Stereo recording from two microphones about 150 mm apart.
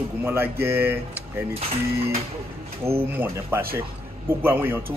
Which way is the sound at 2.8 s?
20° right (ahead or behind).